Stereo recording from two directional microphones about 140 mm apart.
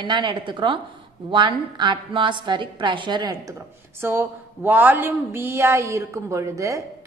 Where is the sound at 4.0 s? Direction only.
15° right (ahead or behind).